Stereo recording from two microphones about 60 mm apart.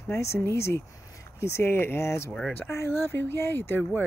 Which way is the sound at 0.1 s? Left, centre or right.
Left.